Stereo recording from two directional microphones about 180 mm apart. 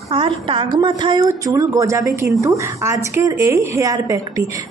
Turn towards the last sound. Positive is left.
turn(degrees=-15)  # may be behind; listen again after turning